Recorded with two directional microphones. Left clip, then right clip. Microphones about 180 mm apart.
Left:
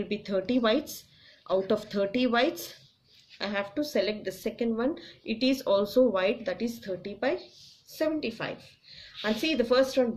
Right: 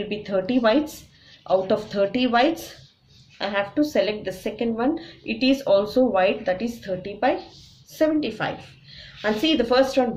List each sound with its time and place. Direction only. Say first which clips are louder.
0.1 s a woman's voice: right 5 dB; 35° left (ahead or behind)